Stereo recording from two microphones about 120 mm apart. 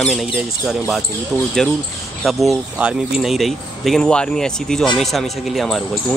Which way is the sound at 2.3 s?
Centre (ahead or behind).